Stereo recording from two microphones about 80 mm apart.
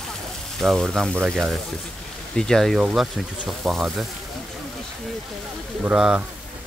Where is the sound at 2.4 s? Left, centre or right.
Centre.